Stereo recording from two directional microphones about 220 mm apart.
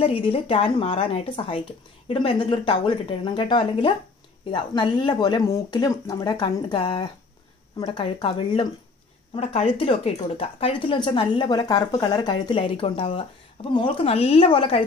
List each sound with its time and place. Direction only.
0.3 s speech: 25° left (ahead or behind)